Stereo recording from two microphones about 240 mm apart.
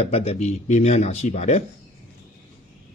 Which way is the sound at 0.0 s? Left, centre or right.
Left.